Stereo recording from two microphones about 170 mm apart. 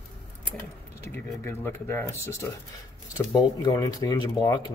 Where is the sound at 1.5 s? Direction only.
15° left (ahead or behind).